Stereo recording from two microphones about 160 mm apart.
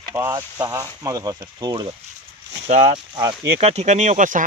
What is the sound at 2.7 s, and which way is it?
Speech, 45° right (ahead or behind).